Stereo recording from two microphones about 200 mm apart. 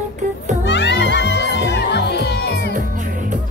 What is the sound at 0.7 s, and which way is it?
Music, 60° left (ahead or behind).